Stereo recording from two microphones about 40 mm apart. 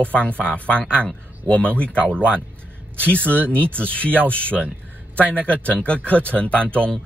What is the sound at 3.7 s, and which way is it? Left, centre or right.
Speech, left.